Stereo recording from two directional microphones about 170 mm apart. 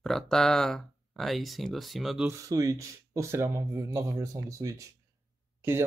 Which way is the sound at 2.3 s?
20° right (ahead or behind).